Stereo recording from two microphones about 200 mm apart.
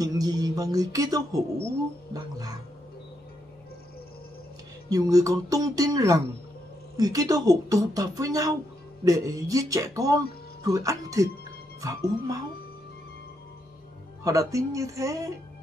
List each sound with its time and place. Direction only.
0.0 s speech: 20° right (ahead or behind)
2.1 s music: 20° right (ahead or behind)
4.8 s speech: 20° right (ahead or behind)
14.2 s speech: 15° right (ahead or behind)